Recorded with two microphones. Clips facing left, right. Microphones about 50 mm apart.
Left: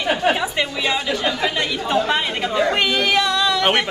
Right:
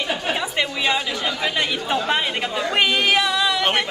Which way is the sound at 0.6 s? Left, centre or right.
Centre.